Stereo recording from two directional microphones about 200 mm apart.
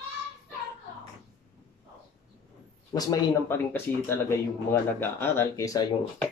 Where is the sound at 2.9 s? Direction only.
15° left (ahead or behind).